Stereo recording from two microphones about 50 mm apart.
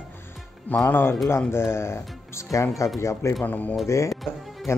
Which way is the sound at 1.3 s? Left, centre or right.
Left.